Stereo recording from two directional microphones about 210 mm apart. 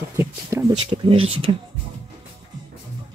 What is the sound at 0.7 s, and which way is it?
Music, 25° right (ahead or behind).